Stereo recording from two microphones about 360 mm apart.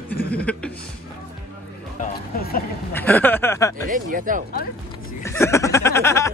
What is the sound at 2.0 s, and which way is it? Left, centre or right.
Speech, left.